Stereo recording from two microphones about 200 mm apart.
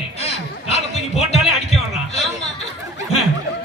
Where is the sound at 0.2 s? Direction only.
30° left (ahead or behind).